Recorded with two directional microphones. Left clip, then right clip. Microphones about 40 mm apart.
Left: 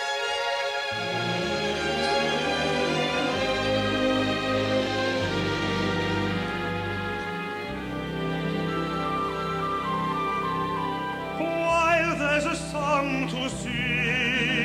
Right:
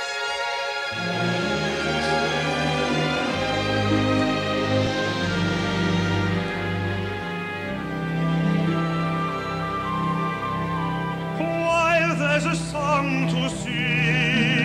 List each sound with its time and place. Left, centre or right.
11.6 s music: right
14.1 s music: centre